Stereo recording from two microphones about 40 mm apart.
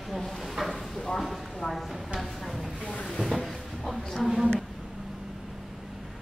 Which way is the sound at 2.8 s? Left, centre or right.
Left.